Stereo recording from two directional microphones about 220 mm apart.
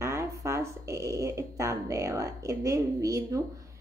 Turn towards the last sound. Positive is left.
turn(degrees=-15)  # may be behind; listen again after turning